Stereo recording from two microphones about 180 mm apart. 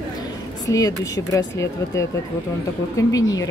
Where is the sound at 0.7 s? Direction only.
20° left (ahead or behind).